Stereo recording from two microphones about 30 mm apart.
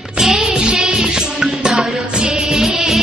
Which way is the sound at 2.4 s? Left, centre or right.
Centre.